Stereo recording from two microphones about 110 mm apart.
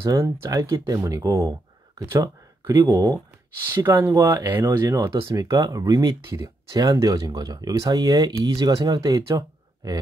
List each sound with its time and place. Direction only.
0.0 s speech: 25° right (ahead or behind)
3.8 s speech: 25° right (ahead or behind)
4.3 s speech: 35° right (ahead or behind)